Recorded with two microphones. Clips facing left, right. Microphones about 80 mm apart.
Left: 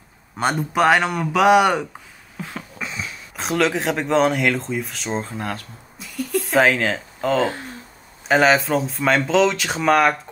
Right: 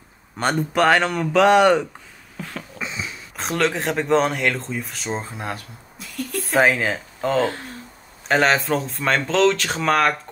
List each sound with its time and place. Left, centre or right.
0.4 s a man's voice: centre
2.8 s speech: centre
5.9 s a sound: centre
8.3 s speech: centre